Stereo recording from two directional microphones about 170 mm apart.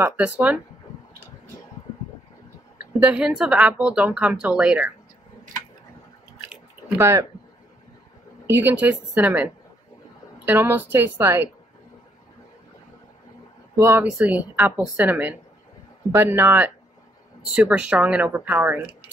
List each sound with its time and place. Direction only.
0.0 s speech: 10° right (ahead or behind)
3.1 s speech: 5° right (ahead or behind)
7.0 s speech: 15° right (ahead or behind)
8.5 s speech: 10° right (ahead or behind)
13.7 s speech: 15° right (ahead or behind)